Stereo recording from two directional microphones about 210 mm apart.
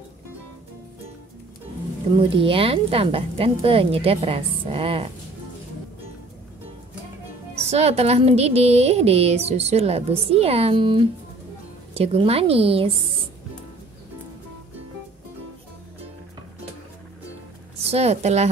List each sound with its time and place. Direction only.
2.1 s speech: 25° right (ahead or behind)
7.5 s speech: 30° right (ahead or behind)
17.7 s a woman's voice: 30° right (ahead or behind)